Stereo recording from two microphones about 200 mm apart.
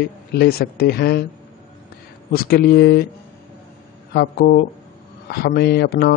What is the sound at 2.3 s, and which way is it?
Speech, 50° left (ahead or behind).